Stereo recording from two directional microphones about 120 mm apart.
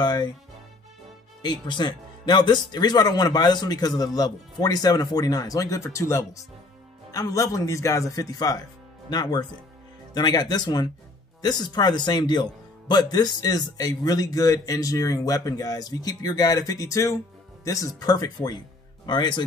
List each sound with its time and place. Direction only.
0.0 s speech: 35° left (ahead or behind)
1.4 s speech: 40° left (ahead or behind)